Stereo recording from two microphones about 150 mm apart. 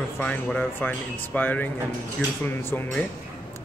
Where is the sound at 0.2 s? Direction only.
10° left (ahead or behind).